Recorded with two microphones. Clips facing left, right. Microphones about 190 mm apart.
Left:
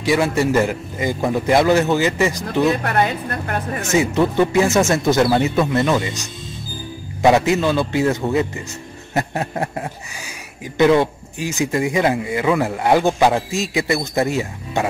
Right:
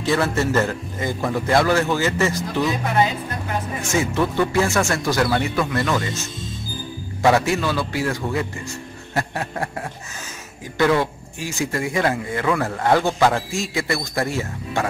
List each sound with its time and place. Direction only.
0.0 s a man's voice: 15° left (ahead or behind)
2.6 s speech: 65° left (ahead or behind)
3.9 s speech: 20° left (ahead or behind)